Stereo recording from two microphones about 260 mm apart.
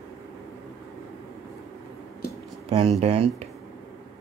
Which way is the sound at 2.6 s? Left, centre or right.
Right.